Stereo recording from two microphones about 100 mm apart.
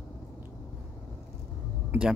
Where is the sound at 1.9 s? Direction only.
20° right (ahead or behind).